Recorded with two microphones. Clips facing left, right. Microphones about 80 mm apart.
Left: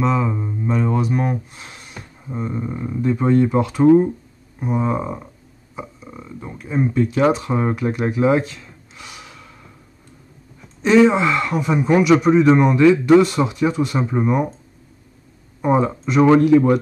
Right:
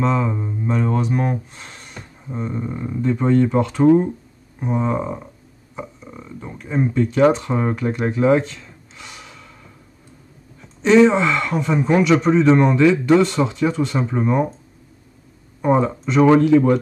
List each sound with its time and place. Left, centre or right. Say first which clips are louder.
0.0 s speech: even; centre
10.8 s speech: even; centre
15.6 s speech: even; centre